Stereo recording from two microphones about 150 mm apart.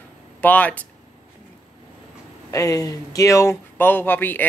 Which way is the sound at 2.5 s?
20° left (ahead or behind).